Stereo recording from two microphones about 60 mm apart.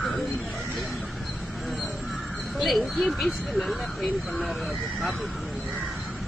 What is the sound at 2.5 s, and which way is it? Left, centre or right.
Speech, centre.